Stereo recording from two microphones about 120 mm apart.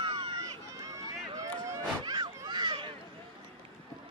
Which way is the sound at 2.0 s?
40° right (ahead or behind).